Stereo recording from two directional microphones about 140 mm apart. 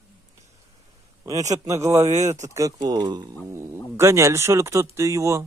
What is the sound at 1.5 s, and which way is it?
Speech, 20° right (ahead or behind).